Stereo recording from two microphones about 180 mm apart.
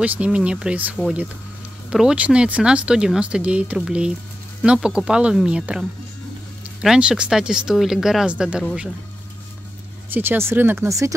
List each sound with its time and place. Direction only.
0.0 s speech: 5° right (ahead or behind)
10.1 s speech: 10° right (ahead or behind)